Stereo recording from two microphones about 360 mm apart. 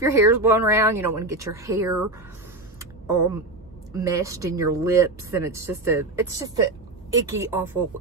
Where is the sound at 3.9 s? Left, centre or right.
Centre.